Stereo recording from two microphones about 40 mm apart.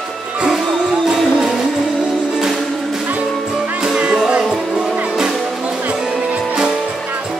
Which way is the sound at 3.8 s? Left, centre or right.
Centre.